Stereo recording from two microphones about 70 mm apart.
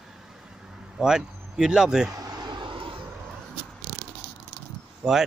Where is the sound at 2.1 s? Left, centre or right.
Right.